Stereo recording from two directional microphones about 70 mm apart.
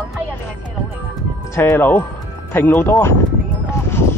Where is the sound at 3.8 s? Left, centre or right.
Left.